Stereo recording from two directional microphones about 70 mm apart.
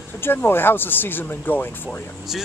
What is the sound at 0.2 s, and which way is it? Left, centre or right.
Speech, left.